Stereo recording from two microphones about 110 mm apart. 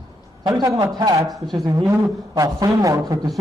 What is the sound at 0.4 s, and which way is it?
A man's voice, 40° right (ahead or behind).